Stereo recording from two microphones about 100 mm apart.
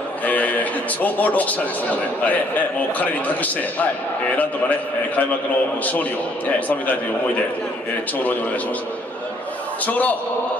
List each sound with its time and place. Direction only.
0.2 s a man's voice: 15° left (ahead or behind)
9.8 s a man's voice: 15° left (ahead or behind)